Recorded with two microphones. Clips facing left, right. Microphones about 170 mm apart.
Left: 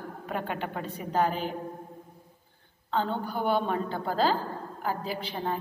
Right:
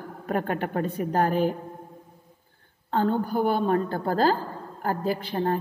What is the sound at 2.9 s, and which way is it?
A woman's voice, 45° right (ahead or behind).